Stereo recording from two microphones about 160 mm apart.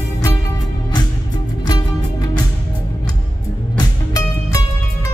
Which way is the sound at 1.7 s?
25° left (ahead or behind).